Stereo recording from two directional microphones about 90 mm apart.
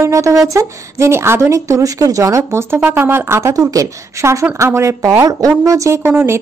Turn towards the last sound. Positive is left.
turn(degrees=-25)  # may be behind; listen again after turning